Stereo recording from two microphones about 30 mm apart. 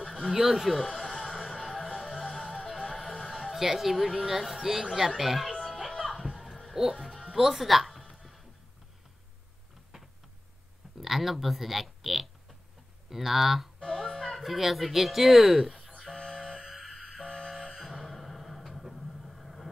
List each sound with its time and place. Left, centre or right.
0.3 s speech: centre
0.7 s speech: centre
1.1 s music: centre
3.5 s speech: centre
5.7 s music: centre
6.8 s speech: centre
11.0 s speech: centre
13.7 s speech: centre
16.2 s a sound: centre
16.7 s a sound: centre
17.2 s music: centre
17.6 s music: centre